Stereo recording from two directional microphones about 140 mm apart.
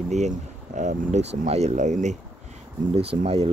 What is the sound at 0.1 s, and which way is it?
Speech, 55° right (ahead or behind).